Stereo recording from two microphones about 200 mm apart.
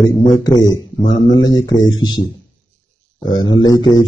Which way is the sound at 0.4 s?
20° left (ahead or behind).